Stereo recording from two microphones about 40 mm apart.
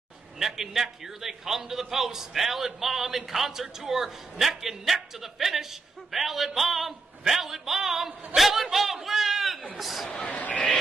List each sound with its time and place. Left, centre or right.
0.4 s a man's voice: centre
10.0 s speech: centre
10.3 s speech: left